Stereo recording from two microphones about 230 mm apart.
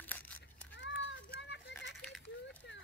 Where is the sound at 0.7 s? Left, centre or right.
Left.